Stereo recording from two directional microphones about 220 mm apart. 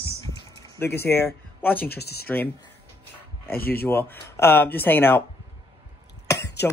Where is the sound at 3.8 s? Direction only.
10° left (ahead or behind).